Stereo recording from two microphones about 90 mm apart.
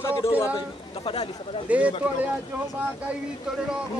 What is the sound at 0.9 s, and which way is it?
Speech, 90° left.